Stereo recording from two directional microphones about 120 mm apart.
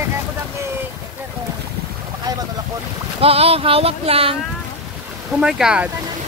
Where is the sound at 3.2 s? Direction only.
55° right (ahead or behind).